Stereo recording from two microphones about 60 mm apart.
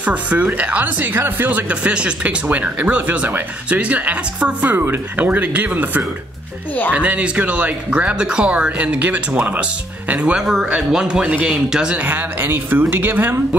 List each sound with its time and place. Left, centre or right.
0.0 s speech: right
1.1 s speech: right
1.7 s speech: right
10.6 s speech: centre
12.1 s speech: right